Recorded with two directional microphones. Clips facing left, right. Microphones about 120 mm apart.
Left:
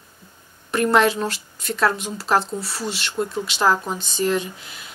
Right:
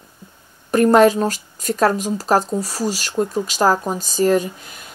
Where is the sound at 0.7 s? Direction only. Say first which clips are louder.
Right 6 dB; 40° right (ahead or behind).